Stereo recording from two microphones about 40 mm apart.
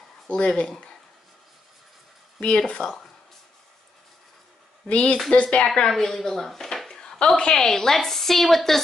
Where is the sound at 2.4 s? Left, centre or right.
Left.